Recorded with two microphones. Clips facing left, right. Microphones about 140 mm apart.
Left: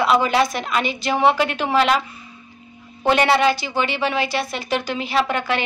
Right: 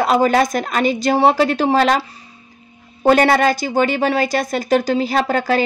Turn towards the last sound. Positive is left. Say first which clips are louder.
# right 4 dB
turn(degrees=-35)  # may be behind; listen again after turning